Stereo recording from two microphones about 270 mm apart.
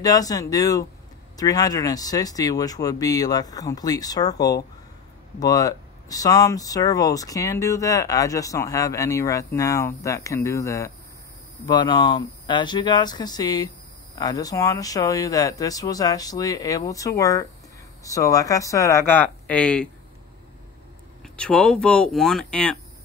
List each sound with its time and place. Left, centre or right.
0.0 s speech: centre
21.2 s speech: centre